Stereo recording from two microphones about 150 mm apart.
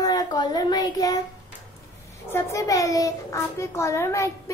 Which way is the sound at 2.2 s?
20° left (ahead or behind).